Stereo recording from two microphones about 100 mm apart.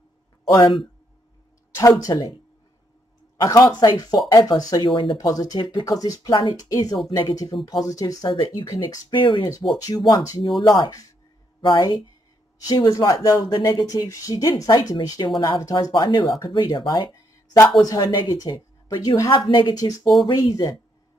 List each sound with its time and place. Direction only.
1.8 s speech: 35° left (ahead or behind)
3.4 s speech: 35° left (ahead or behind)
9.1 s speech: 55° left (ahead or behind)
9.8 s speech: 40° left (ahead or behind)
17.6 s speech: 35° left (ahead or behind)
19.3 s a woman's voice: 55° left (ahead or behind)
19.7 s speech: 40° left (ahead or behind)